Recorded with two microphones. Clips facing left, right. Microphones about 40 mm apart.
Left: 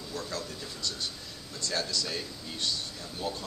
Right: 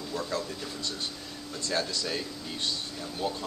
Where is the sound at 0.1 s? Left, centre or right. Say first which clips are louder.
Right 4 dB; right.